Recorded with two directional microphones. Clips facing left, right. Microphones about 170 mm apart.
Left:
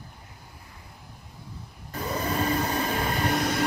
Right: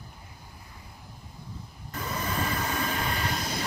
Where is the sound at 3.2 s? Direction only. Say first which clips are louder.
Left 7 dB; 60° left (ahead or behind).